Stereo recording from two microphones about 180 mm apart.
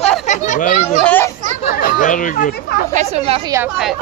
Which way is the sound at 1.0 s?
10° left (ahead or behind).